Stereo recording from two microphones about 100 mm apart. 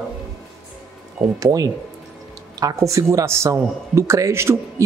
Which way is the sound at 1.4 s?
35° right (ahead or behind).